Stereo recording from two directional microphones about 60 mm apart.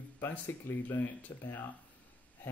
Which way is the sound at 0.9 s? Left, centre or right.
Left.